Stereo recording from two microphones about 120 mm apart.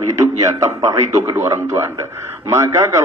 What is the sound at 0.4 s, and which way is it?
A man's voice, 25° right (ahead or behind).